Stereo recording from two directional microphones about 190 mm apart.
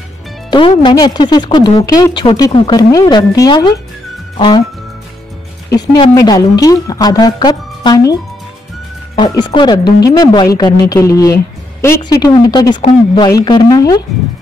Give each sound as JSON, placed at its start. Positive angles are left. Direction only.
{"t": 0.5, "sound": "speech", "side_deg": 25}
{"t": 5.8, "sound": "speech", "side_deg": 25}